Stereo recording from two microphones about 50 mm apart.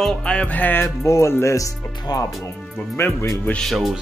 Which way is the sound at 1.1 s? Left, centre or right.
Left.